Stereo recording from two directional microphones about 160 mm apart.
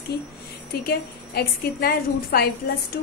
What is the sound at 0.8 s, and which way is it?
A woman's voice, 75° left (ahead or behind).